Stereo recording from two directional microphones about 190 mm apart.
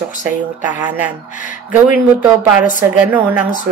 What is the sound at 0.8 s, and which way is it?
Speech, 10° right (ahead or behind).